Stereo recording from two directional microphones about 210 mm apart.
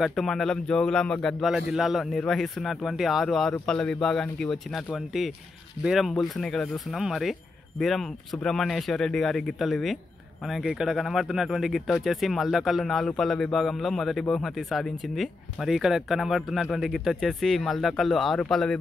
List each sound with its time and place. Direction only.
0.0 s speech: centre (ahead or behind)